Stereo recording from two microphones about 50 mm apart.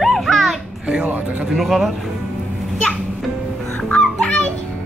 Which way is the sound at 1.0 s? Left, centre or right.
Right.